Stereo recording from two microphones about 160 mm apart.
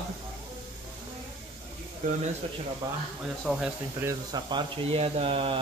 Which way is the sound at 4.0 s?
20° right (ahead or behind).